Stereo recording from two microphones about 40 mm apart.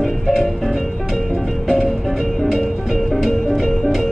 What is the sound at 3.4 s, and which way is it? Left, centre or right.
Music, centre.